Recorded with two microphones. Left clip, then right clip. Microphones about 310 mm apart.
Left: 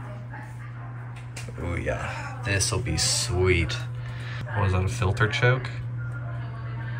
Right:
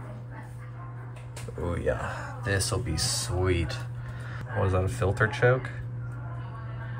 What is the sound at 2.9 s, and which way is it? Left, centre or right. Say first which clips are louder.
Speech: left 7 dB; centre.